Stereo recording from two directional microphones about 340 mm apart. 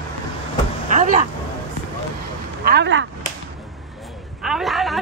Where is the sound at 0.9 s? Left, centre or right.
Right.